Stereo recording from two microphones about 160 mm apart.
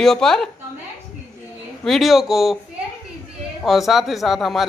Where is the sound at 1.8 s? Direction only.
Centre (ahead or behind).